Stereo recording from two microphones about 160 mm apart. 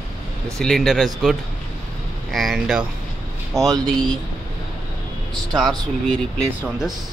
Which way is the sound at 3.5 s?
20° right (ahead or behind).